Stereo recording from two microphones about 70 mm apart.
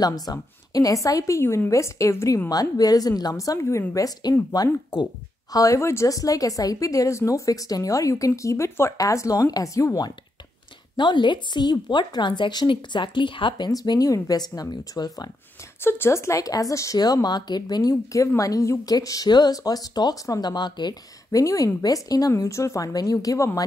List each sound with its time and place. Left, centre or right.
0.0 s a woman's voice: left
2.5 s a woman's voice: left
3.5 s speech: left
4.2 s a woman's voice: left
5.8 s speech: left
8.9 s speech: left
11.0 s a woman's voice: left
15.8 s speech: left
17.0 s speech: left
18.1 s speech: left
18.9 s speech: left
21.3 s a woman's voice: left
22.3 s speech: left